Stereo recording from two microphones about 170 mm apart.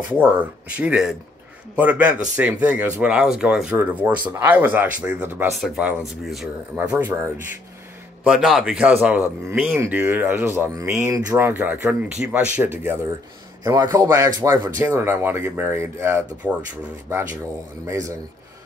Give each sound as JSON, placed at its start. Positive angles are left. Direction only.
{"t": 0.0, "sound": "a man's voice", "side_deg": -10}
{"t": 17.8, "sound": "speech", "side_deg": -20}